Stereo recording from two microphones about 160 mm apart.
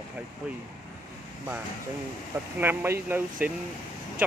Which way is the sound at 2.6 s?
15° right (ahead or behind).